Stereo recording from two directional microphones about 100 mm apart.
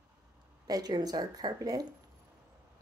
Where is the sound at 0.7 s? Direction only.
45° right (ahead or behind).